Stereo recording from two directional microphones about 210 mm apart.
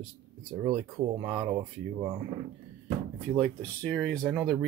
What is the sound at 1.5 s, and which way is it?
Speech, 20° right (ahead or behind).